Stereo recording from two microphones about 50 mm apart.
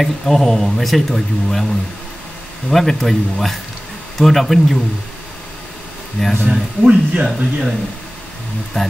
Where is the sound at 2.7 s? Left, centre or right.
Centre.